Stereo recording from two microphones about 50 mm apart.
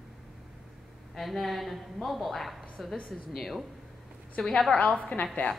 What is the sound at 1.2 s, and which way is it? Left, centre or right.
Speech, centre.